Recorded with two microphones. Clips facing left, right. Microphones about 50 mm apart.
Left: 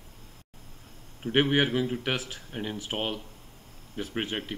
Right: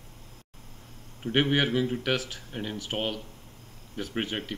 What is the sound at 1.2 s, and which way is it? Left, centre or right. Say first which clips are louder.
Speech: left 1 dB; centre.